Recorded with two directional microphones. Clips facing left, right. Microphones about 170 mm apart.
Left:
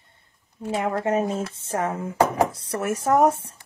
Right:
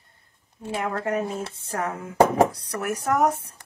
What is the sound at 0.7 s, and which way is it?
Speech, 25° left (ahead or behind).